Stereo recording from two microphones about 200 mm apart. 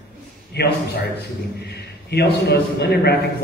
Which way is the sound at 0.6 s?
55° left (ahead or behind).